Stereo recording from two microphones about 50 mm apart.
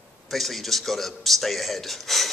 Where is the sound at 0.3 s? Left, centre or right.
Centre.